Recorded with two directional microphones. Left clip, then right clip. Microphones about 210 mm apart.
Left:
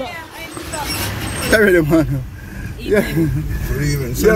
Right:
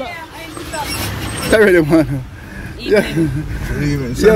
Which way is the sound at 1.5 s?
5° right (ahead or behind).